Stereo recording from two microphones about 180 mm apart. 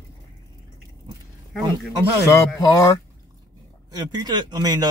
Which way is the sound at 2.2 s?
15° left (ahead or behind).